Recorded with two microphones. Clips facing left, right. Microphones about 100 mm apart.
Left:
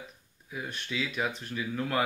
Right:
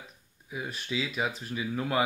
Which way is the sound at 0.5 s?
5° right (ahead or behind).